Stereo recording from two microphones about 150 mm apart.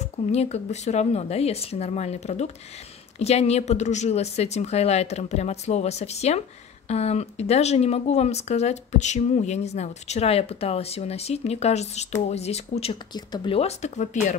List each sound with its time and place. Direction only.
0.0 s speech: 45° left (ahead or behind)
13.1 s speech: 30° left (ahead or behind); by 14.3 s 50° left (ahead or behind)